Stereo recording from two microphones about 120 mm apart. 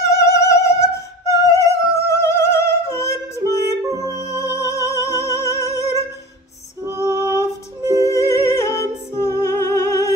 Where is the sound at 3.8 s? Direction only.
30° right (ahead or behind).